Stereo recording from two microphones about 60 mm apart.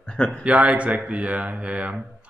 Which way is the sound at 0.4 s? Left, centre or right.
Right.